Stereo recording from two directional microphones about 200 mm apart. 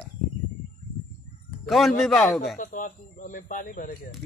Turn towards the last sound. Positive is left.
turn(degrees=40)  # may be behind; listen again after turning